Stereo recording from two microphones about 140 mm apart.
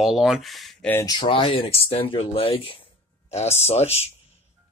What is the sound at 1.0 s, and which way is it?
Speech, 30° left (ahead or behind).